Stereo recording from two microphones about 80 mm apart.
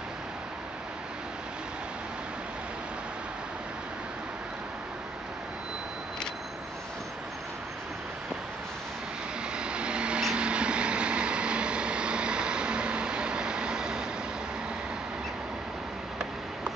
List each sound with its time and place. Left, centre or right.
9.6 s vehicle: centre